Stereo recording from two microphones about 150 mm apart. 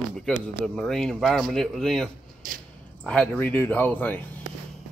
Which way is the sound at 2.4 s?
65° right (ahead or behind).